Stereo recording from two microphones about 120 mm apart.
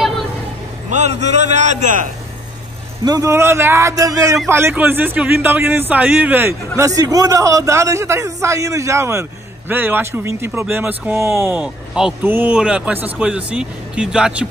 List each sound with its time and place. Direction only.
0.8 s a man's voice: 75° right (ahead or behind); by 2.0 s 90° right
3.1 s a man's voice: 25° right (ahead or behind)
6.8 s a man's voice: 30° right (ahead or behind); by 14.5 s 5° right (ahead or behind)